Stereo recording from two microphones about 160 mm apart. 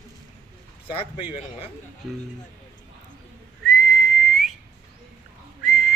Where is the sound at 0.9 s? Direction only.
35° left (ahead or behind).